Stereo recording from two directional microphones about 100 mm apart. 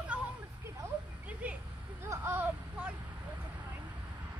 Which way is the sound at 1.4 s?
15° right (ahead or behind).